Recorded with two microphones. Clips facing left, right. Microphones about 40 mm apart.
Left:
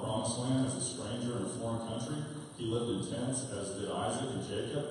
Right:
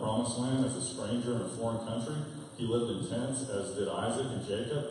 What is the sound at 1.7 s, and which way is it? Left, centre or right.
Speech, centre.